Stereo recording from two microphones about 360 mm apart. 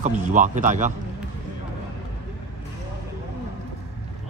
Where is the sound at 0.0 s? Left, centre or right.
Centre.